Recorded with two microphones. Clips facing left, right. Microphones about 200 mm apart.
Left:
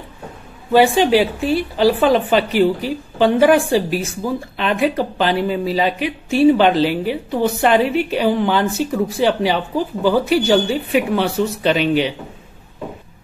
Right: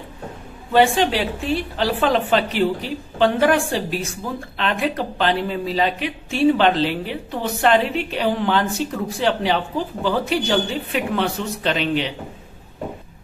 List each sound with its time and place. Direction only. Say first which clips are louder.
0.7 s a woman's voice: left 4 dB; 5° left (ahead or behind)